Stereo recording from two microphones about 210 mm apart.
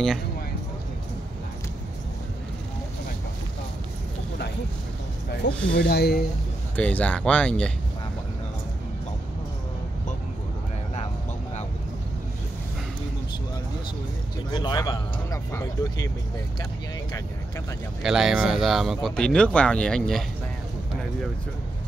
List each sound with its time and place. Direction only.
5.4 s speech: 55° left (ahead or behind)
6.8 s speech: 5° left (ahead or behind)
14.5 s a man's voice: 20° left (ahead or behind)
18.0 s speech: centre (ahead or behind)